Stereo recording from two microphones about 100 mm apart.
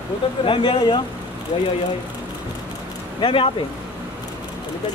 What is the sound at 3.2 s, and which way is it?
Speech, 60° left (ahead or behind).